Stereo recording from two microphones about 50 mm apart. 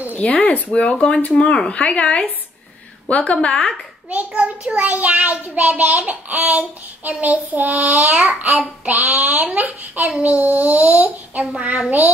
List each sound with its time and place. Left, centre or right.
0.3 s speech: left; by 1.8 s centre
1.8 s speech: left
4.3 s a child's voice: right
4.8 s child singing: right
9.6 s a child's voice: right
10.4 s child singing: right; by 11.9 s centre